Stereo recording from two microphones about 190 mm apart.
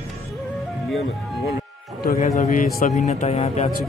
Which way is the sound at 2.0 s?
50° left (ahead or behind).